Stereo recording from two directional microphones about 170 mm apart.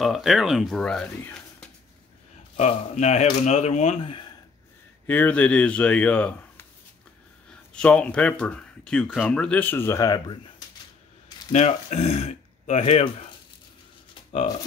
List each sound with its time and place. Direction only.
0.0 s speech: centre (ahead or behind)
2.5 s speech: 40° left (ahead or behind)
5.0 s speech: 10° left (ahead or behind)
7.7 s speech: 5° left (ahead or behind); by 10.4 s 25° left (ahead or behind)
11.5 s speech: 40° left (ahead or behind)